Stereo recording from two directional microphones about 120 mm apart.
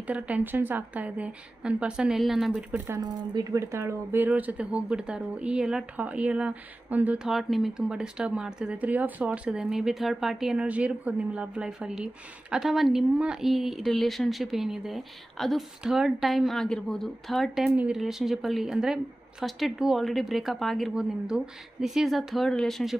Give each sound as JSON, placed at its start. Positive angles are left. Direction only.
{"t": 0.0, "sound": "speech", "side_deg": -10}
{"t": 3.0, "sound": "speech", "side_deg": -30}
{"t": 7.3, "sound": "speech", "side_deg": 0}